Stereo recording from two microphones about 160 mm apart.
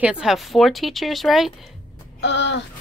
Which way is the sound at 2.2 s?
90° left.